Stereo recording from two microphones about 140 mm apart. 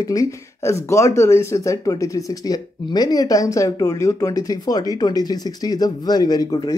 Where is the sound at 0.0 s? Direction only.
25° left (ahead or behind).